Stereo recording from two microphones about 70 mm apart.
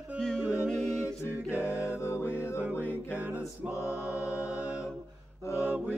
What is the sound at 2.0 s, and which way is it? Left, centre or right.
Music, left.